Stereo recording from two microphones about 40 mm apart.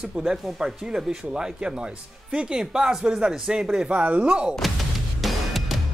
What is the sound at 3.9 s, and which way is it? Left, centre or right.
Speech, right.